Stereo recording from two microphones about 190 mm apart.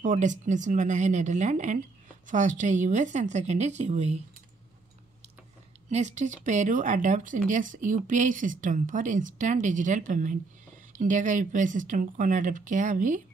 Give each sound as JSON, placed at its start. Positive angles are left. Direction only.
{"t": 0.0, "sound": "speech", "side_deg": -40}
{"t": 5.9, "sound": "speech", "side_deg": -35}